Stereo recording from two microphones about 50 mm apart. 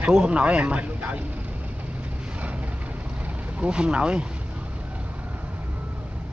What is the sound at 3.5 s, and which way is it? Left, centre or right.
Speech, right.